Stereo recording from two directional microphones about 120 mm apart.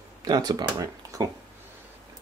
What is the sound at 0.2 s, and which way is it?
Speech, 35° right (ahead or behind).